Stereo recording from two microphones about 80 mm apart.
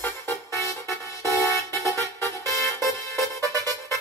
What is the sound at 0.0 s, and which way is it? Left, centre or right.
Music, left.